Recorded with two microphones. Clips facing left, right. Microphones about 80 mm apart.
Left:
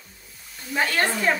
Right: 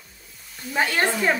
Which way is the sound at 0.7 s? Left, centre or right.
Centre.